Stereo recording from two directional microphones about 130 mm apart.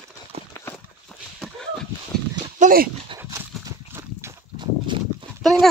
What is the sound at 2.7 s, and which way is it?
Dog, 70° right (ahead or behind).